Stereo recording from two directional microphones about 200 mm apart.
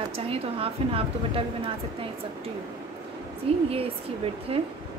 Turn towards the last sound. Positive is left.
turn(degrees=-30)  # may be behind; listen again after turning